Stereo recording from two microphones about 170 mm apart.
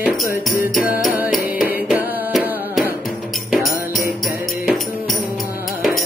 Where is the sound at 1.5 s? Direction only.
55° left (ahead or behind).